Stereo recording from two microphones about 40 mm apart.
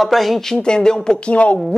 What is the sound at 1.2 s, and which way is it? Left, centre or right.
Speech, left.